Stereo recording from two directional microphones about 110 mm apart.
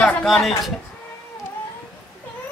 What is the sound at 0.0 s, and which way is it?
Speech, centre (ahead or behind).